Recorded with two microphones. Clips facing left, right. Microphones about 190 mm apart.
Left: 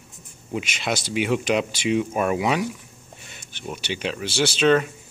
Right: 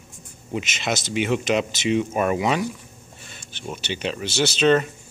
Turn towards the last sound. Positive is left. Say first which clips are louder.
# even
turn(degrees=5)  # may be behind; listen again after turning